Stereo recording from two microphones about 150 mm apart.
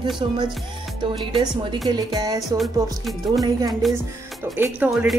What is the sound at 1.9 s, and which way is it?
Music, 25° right (ahead or behind).